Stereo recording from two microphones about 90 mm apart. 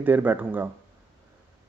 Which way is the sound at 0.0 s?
20° right (ahead or behind).